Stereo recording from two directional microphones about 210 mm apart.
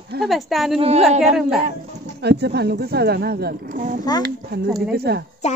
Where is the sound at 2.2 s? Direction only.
50° right (ahead or behind).